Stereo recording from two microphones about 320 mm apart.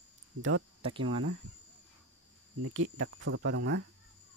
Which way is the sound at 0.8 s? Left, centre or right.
Centre.